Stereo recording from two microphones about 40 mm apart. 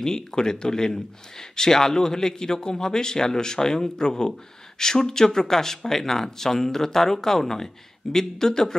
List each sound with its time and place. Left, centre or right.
0.0 s speech: centre